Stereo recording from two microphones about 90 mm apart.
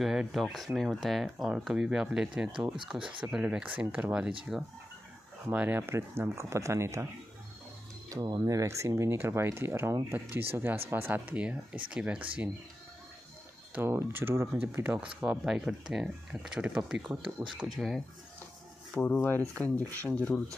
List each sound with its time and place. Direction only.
0.0 s speech: 5° right (ahead or behind)
4.5 s speech: 5° right (ahead or behind)
5.5 s speech: 20° right (ahead or behind)
8.1 s speech: 45° right (ahead or behind); by 12.4 s 15° right (ahead or behind)
13.7 s speech: 25° right (ahead or behind)
15.4 s speech: 5° right (ahead or behind); by 20.4 s 15° left (ahead or behind)